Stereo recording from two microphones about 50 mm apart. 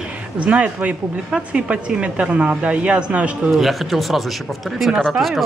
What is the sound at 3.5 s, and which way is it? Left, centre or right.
Speech, centre.